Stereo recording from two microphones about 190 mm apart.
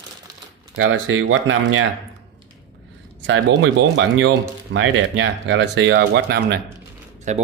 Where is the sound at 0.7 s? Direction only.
90° right.